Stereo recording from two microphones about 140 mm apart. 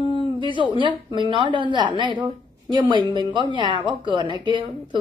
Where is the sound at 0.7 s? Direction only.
35° right (ahead or behind).